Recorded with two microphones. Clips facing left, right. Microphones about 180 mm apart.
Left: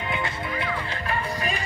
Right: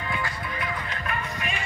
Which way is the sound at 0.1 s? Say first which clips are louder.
Left 3 dB; 25° left (ahead or behind).